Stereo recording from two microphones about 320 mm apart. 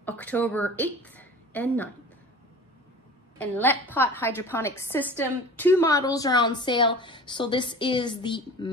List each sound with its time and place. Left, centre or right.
0.0 s a woman's voice: centre
3.3 s a woman's voice: centre